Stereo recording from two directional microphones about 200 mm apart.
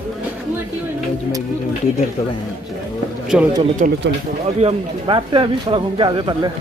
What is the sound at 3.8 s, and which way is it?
Speech, 40° right (ahead or behind).